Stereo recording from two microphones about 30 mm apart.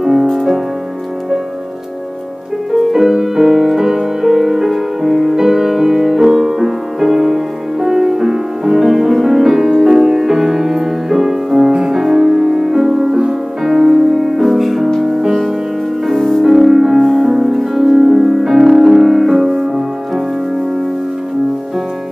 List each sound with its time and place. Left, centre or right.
0.0 s music: right
0.3 s music: centre
2.7 s music: centre
11.7 s music: right
12.0 s music: centre
16.4 s music: centre